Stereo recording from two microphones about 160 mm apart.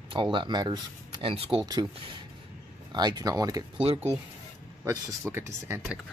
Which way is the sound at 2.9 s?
25° right (ahead or behind).